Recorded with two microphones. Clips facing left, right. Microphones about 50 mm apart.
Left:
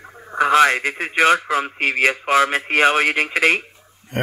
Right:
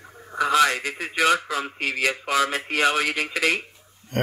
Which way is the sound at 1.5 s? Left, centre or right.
Left.